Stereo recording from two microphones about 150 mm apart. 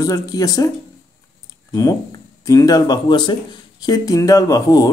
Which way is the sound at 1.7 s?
25° left (ahead or behind).